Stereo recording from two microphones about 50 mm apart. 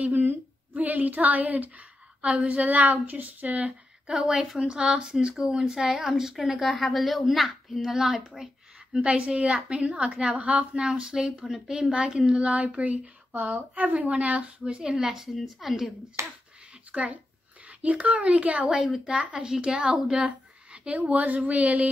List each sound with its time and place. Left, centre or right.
0.0 s speech: right
4.6 s a woman's voice: centre
9.0 s a woman's voice: right
14.7 s a woman's voice: centre
16.2 s speech: right
16.9 s a woman's voice: right
18.7 s a woman's voice: centre
19.1 s a woman's voice: right